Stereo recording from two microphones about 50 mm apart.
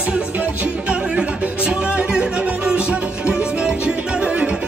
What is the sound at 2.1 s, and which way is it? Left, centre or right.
Music, centre.